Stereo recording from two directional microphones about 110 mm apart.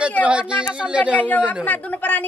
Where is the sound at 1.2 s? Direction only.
15° left (ahead or behind).